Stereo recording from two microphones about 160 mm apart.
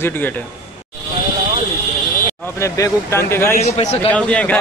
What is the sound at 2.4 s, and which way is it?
Speech, 20° left (ahead or behind).